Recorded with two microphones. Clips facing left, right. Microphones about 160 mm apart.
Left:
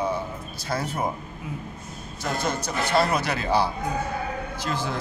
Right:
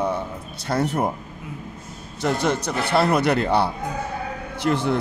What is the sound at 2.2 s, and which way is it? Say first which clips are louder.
A man's voice: right 6 dB; 70° right (ahead or behind).